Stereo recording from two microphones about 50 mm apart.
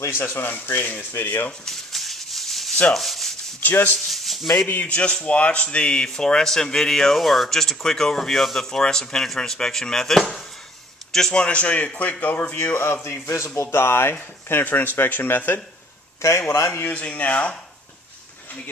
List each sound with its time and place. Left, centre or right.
0.1 s speech: left
1.6 s maraca: centre
2.9 s sanding: centre
3.6 s speech: left
4.1 s a sound: centre
4.6 s a man's voice: left; by 11.4 s centre
11.4 s speech: left
12.7 s speech: left
14.6 s speech: left
16.2 s a man's voice: left
16.8 s speech: left